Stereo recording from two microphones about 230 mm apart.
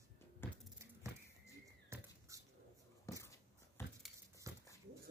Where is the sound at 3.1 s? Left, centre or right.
Centre.